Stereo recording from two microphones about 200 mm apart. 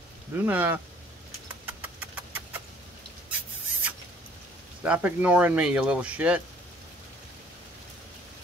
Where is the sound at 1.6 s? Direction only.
10° right (ahead or behind).